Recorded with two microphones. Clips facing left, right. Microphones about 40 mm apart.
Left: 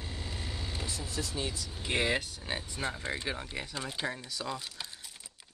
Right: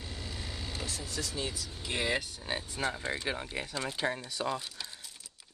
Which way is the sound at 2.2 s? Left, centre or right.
Centre.